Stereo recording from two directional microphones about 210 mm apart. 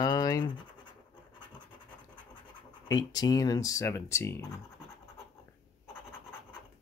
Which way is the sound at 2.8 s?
20° left (ahead or behind).